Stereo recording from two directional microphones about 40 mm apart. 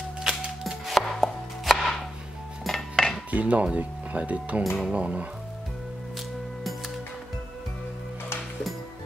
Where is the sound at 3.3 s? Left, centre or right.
Right.